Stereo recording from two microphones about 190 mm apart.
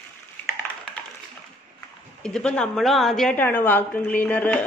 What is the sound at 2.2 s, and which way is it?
A woman's voice, 5° left (ahead or behind).